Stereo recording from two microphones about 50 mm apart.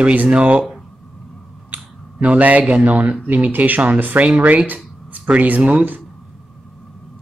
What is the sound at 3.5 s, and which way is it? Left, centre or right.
Speech, right.